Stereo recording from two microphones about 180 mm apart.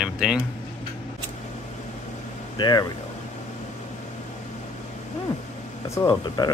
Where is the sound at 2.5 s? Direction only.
25° left (ahead or behind).